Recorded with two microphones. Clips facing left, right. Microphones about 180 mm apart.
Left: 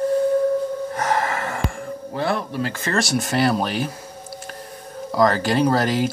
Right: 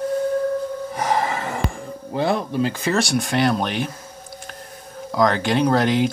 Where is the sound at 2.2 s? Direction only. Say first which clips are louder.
Right 3 dB; 20° right (ahead or behind).